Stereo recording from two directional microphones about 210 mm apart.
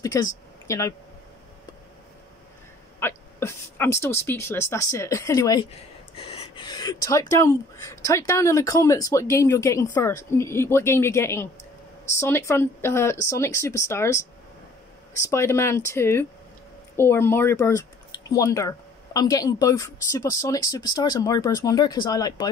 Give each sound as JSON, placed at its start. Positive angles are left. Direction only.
{"t": 0.0, "sound": "speech", "side_deg": 15}
{"t": 3.0, "sound": "speech", "side_deg": 10}